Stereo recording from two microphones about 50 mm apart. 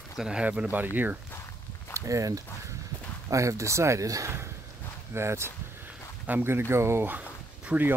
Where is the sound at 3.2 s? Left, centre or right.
Right.